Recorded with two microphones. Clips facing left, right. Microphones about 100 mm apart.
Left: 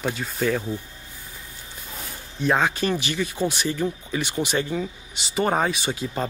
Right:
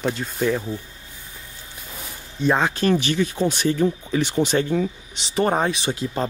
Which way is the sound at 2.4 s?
Centre (ahead or behind).